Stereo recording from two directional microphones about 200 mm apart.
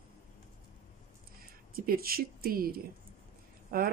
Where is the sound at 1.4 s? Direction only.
45° right (ahead or behind).